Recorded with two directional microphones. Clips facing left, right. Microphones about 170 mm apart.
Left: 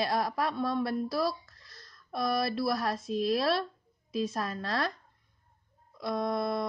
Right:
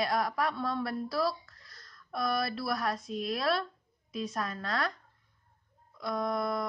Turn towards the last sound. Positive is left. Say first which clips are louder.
# left 1 dB
turn(degrees=25)  # may be behind; listen again after turning